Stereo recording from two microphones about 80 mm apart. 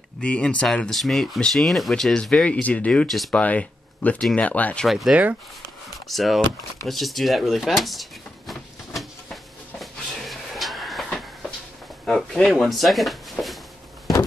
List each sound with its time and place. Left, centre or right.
0.2 s speech: centre
3.1 s speech: centre
3.3 s speech: centre
4.8 s speech: centre
5.1 s speech: centre
6.0 s speech: centre
6.9 s a sound: centre
12.1 s speech: centre